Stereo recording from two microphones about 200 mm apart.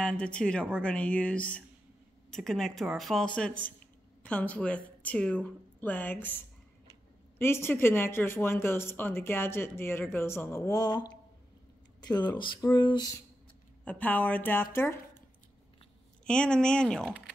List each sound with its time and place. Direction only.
0.0 s speech: 5° left (ahead or behind)
7.3 s speech: 10° left (ahead or behind)
13.8 s speech: 10° left (ahead or behind)
16.3 s speech: 5° left (ahead or behind)